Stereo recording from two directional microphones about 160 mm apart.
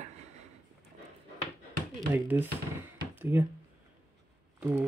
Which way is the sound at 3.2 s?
15° right (ahead or behind).